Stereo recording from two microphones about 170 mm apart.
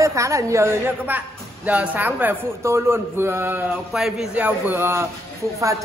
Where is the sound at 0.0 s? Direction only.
20° right (ahead or behind).